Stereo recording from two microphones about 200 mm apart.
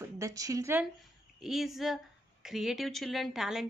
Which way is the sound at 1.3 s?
Centre (ahead or behind).